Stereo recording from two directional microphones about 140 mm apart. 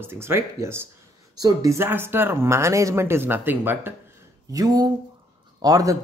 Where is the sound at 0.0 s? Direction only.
15° right (ahead or behind).